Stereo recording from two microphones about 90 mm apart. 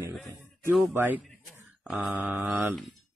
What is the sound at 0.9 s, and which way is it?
Speech, 20° right (ahead or behind).